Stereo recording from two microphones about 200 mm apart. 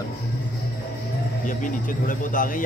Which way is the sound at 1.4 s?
40° left (ahead or behind).